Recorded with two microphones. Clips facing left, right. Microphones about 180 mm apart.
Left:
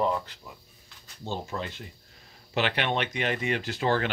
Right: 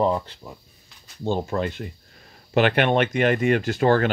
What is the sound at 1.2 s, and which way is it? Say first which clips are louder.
Speech: right 9 dB; 55° right (ahead or behind).